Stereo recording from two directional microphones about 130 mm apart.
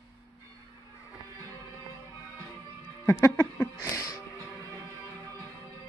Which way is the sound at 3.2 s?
20° left (ahead or behind).